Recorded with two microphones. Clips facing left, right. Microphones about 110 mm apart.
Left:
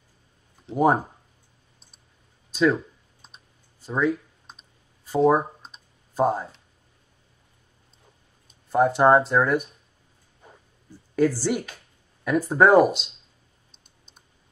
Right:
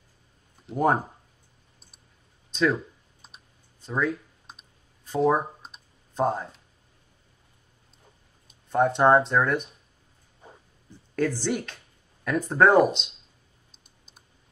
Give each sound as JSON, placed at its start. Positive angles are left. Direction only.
{"t": 0.7, "sound": "speech", "side_deg": 0}
{"t": 2.5, "sound": "computer keyboard", "side_deg": 0}
{"t": 5.0, "sound": "clicking", "side_deg": 5}
{"t": 8.5, "sound": "speech", "side_deg": 0}
{"t": 10.9, "sound": "speech", "side_deg": 5}